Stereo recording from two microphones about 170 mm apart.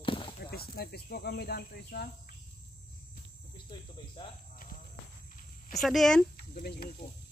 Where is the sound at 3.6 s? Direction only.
30° left (ahead or behind).